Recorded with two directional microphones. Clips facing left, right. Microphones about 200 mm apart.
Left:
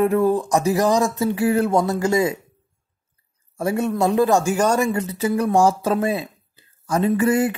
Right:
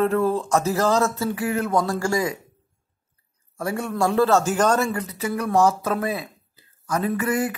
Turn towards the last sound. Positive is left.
turn(degrees=30)  # may be behind; listen again after turning